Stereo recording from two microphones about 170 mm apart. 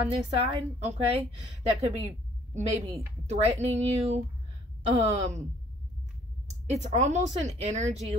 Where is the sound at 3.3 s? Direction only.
40° right (ahead or behind).